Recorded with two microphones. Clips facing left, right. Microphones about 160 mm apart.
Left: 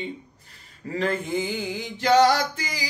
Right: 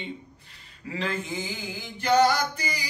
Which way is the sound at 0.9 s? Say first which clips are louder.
Left 5 dB; 50° left (ahead or behind).